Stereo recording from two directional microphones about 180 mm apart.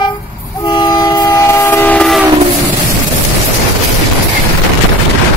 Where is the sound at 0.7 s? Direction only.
25° left (ahead or behind); by 2.2 s centre (ahead or behind).